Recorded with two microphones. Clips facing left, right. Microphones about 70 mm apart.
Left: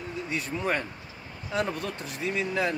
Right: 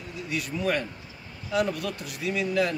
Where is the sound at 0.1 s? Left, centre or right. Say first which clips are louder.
Right 1 dB; left.